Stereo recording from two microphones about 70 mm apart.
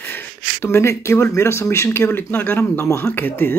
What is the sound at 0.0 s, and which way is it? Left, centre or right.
Speech, left.